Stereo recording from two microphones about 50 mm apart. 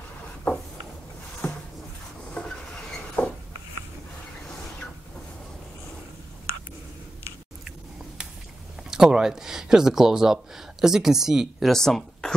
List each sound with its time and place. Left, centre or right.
0.5 s a sound: left
2.3 s train: centre
8.9 s speech: centre
11.7 s speech: centre